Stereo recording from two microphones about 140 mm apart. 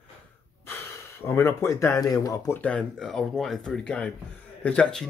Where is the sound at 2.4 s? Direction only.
10° left (ahead or behind).